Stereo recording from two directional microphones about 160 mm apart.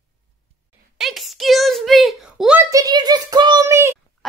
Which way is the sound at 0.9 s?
Centre (ahead or behind).